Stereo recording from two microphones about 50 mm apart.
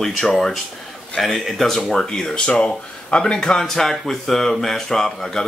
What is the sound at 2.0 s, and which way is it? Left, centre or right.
Speech, centre.